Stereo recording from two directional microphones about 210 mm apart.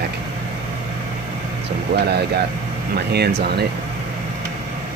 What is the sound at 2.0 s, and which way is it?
Speech, 50° right (ahead or behind).